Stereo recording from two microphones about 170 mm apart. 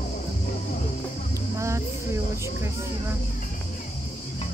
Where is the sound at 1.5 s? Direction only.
15° right (ahead or behind).